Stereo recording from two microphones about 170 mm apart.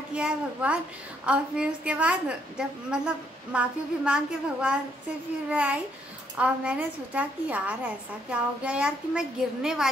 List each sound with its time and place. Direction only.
0.1 s a woman's voice: 5° right (ahead or behind)